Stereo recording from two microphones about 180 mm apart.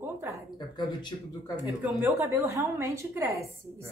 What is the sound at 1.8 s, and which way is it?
A woman's voice, 15° right (ahead or behind).